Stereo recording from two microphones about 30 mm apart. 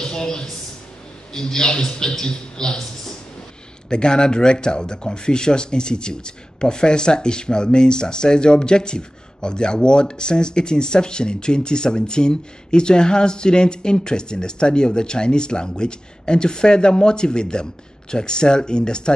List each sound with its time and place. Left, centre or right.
0.0 s a sound: left
1.3 s speech: left
3.9 s speech: left